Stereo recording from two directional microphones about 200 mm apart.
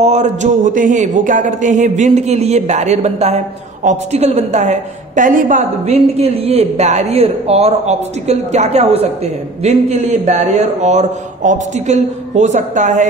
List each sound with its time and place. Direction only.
0.0 s a woman's voice: 35° right (ahead or behind)